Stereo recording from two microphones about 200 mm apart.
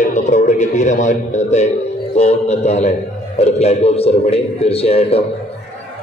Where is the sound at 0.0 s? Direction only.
40° left (ahead or behind).